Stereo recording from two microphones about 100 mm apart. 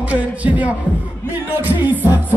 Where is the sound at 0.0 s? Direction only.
15° right (ahead or behind).